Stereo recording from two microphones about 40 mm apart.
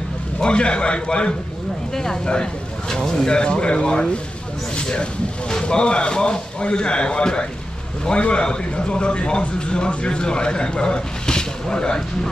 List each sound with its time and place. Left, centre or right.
0.4 s a man's voice: left